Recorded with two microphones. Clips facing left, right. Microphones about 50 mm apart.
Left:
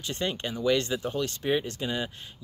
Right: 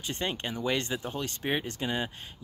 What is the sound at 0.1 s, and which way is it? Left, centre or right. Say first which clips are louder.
A child's voice: left 2 dB; right.